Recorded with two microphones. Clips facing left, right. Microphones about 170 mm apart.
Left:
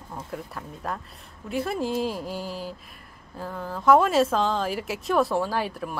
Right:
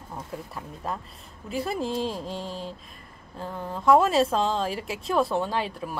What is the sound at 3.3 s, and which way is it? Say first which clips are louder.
Speech: even; centre (ahead or behind).